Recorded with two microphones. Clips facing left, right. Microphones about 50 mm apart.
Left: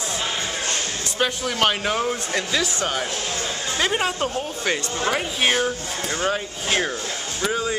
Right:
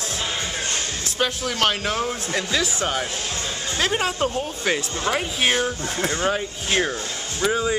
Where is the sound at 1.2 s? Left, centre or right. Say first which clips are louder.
Left 1 dB; centre.